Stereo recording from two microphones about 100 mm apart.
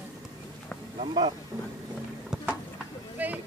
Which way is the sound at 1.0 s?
55° right (ahead or behind).